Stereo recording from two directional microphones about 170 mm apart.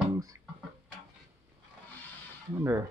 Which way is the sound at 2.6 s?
15° right (ahead or behind).